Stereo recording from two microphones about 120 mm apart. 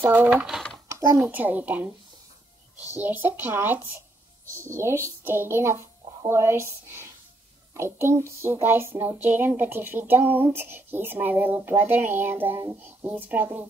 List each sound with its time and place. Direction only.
0.0 s speech: 15° right (ahead or behind)
3.0 s speech: 15° right (ahead or behind)
5.2 s a child's voice: 20° right (ahead or behind)
7.7 s a sound: 20° right (ahead or behind)
10.3 s speech: 15° right (ahead or behind)